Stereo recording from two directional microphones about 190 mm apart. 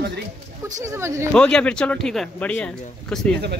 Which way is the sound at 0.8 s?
15° right (ahead or behind).